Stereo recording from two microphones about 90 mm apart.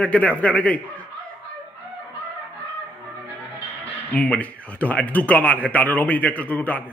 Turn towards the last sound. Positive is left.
turn(degrees=15)  # may be behind; listen again after turning